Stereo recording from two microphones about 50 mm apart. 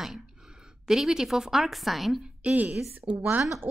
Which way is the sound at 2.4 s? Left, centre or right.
Right.